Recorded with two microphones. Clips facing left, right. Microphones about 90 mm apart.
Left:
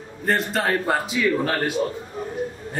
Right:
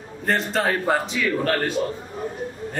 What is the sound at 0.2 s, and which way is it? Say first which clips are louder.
A man's voice: even; centre (ahead or behind).